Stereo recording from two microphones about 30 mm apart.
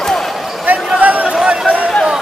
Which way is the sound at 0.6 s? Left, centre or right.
Right.